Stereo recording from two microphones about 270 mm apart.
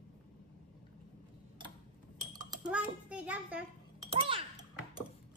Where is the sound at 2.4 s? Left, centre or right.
Centre.